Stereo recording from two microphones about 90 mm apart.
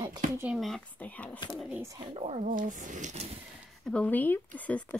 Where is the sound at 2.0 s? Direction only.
90° right.